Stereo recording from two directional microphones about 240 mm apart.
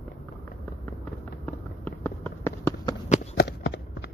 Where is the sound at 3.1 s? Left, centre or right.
Left.